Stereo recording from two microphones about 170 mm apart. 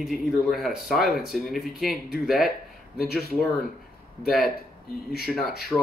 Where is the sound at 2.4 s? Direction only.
65° left (ahead or behind).